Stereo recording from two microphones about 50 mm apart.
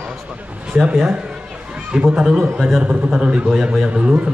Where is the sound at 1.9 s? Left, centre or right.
Centre.